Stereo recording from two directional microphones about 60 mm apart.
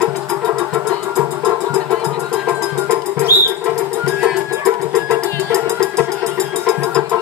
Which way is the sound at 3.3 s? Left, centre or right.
Left.